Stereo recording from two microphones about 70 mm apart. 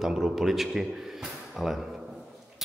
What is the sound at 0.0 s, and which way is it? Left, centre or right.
A man's voice, centre.